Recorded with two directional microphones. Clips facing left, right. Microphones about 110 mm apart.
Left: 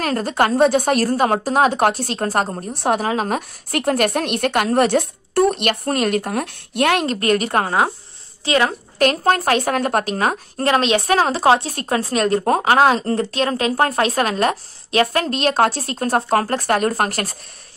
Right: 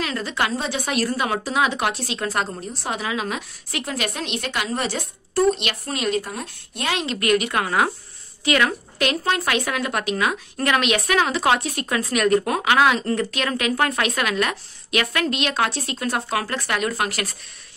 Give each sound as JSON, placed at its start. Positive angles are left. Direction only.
{"t": 0.0, "sound": "a woman's voice", "side_deg": 45}
{"t": 2.7, "sound": "a woman's voice", "side_deg": 55}
{"t": 7.2, "sound": "a woman's voice", "side_deg": 40}